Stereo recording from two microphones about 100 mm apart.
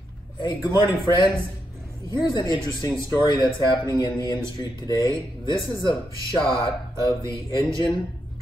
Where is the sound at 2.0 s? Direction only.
45° left (ahead or behind).